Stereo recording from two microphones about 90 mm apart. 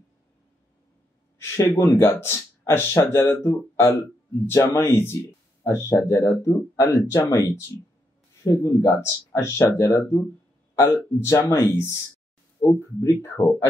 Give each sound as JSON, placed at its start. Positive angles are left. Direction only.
{"t": 1.4, "sound": "speech", "side_deg": 30}